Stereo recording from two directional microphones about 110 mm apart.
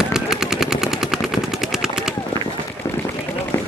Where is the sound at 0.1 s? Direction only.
5° right (ahead or behind).